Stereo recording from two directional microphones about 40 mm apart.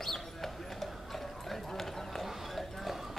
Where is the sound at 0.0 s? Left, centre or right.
Centre.